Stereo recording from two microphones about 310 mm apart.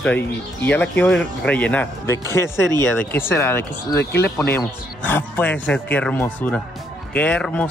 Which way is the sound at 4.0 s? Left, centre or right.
Left.